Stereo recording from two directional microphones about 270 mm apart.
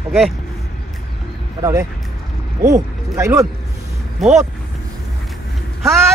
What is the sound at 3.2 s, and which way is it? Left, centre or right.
Speech, centre.